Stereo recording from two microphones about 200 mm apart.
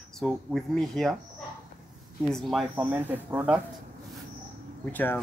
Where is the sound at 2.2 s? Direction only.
Centre (ahead or behind).